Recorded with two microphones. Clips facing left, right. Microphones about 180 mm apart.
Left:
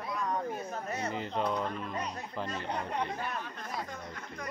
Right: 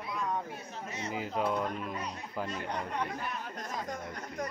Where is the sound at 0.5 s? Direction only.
50° left (ahead or behind).